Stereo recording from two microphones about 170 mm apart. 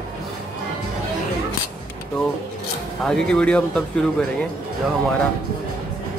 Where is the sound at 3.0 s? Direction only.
5° left (ahead or behind).